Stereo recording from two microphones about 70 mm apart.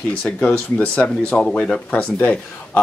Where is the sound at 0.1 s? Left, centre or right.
Centre.